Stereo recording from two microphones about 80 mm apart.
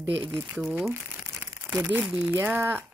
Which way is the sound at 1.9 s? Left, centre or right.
Centre.